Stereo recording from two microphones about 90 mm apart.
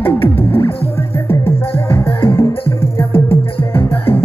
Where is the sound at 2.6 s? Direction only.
90° left.